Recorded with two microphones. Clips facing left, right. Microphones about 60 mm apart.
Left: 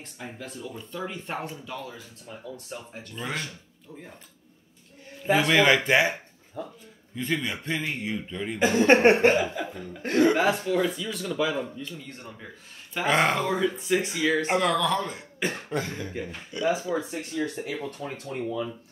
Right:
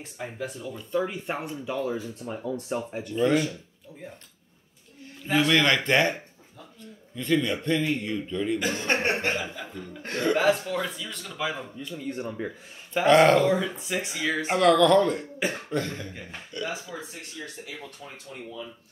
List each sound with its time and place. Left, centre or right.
0.0 s speech: centre
1.7 s speech: right
5.2 s a man's voice: centre
8.5 s speech: left
9.8 s speech: centre
11.9 s speech: centre
13.0 s speech: centre
15.7 s a man's voice: centre
16.9 s speech: left
17.6 s speech: left